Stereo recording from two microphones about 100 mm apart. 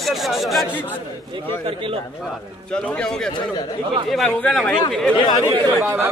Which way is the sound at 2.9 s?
5° left (ahead or behind).